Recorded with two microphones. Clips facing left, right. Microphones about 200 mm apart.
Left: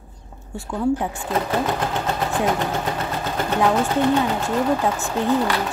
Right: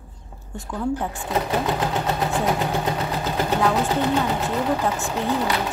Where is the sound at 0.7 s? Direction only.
15° left (ahead or behind).